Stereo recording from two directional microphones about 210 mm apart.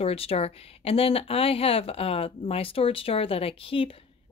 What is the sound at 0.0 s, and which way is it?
Speech, 25° left (ahead or behind).